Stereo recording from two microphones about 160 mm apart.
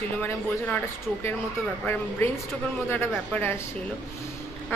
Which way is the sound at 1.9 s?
15° left (ahead or behind).